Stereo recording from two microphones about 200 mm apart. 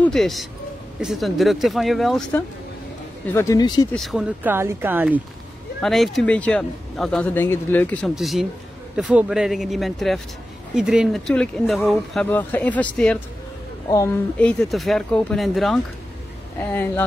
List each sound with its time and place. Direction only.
0.0 s a man's voice: centre (ahead or behind)
3.3 s speech: 15° left (ahead or behind)
3.9 s speech: centre (ahead or behind)